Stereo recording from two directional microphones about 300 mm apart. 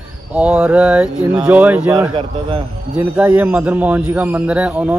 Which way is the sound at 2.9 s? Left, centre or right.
Centre.